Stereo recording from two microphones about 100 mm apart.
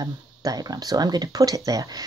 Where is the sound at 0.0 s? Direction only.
40° right (ahead or behind).